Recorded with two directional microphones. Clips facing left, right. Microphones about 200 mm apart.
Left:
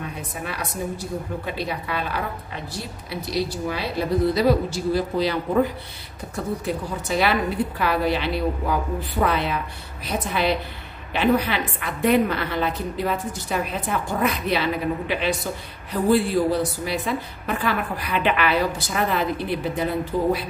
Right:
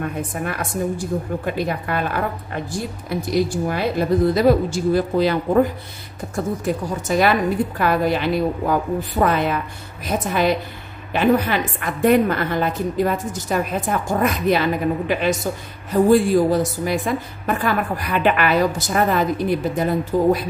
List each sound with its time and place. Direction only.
0.0 s a woman's voice: 50° right (ahead or behind)